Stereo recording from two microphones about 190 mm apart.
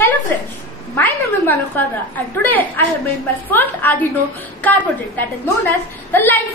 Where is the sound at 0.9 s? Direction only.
10° left (ahead or behind).